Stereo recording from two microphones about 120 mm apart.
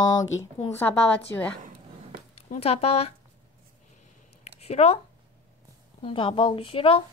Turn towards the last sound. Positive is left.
turn(degrees=50)  # may be behind; listen again after turning